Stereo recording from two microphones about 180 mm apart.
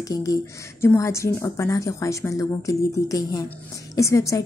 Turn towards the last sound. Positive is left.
turn(degrees=15)  # may be behind; listen again after turning